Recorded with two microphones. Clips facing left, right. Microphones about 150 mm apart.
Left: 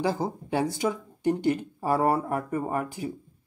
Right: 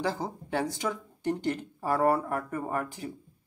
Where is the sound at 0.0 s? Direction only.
10° left (ahead or behind).